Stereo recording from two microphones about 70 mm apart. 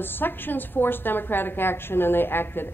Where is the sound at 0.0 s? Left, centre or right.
Left.